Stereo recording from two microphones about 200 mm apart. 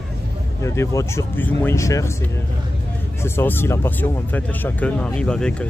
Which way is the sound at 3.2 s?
10° left (ahead or behind).